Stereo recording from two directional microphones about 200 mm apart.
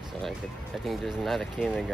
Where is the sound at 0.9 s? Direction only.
Centre (ahead or behind).